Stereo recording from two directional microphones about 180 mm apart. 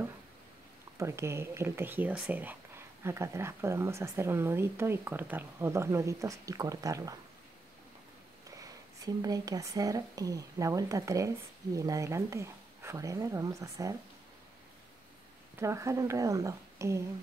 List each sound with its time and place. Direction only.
0.9 s speech: 15° right (ahead or behind)
8.5 s speech: 20° right (ahead or behind)
15.6 s speech: 15° right (ahead or behind)